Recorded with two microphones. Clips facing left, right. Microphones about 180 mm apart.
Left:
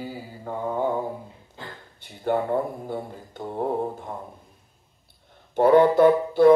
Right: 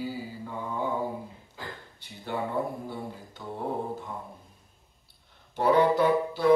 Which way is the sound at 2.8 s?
50° left (ahead or behind).